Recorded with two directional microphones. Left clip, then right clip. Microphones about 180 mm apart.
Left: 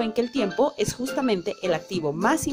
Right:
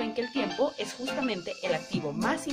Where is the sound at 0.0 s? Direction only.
45° left (ahead or behind).